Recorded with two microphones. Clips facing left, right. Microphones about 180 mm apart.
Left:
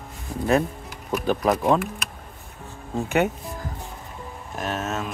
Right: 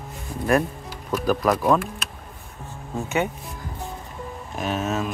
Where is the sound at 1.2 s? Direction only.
25° left (ahead or behind).